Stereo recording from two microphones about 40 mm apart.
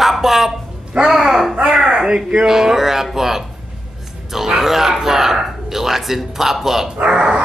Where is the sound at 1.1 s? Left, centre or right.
Centre.